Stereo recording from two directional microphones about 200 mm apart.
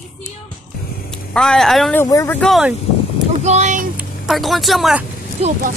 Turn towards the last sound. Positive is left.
turn(degrees=-30)  # may be behind; listen again after turning